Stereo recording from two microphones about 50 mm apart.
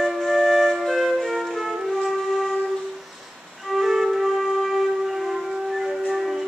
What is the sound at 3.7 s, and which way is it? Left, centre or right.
Flute, centre.